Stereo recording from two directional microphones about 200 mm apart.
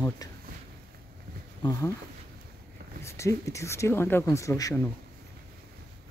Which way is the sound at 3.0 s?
15° left (ahead or behind).